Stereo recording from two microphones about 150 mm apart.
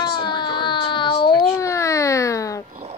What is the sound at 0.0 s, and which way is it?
Baby cry, 30° left (ahead or behind).